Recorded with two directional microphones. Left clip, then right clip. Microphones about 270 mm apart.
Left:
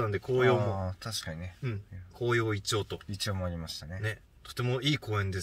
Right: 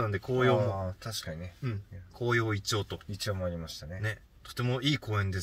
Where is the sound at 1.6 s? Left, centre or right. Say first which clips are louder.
Even; centre.